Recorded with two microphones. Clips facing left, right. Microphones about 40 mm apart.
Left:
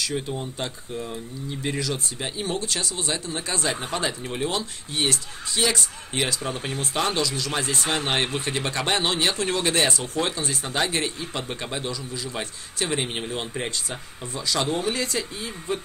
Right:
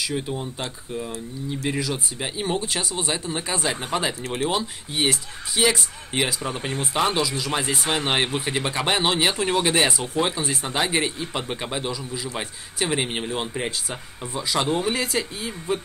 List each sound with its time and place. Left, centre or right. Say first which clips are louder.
0.0 s speech: right 1 dB; centre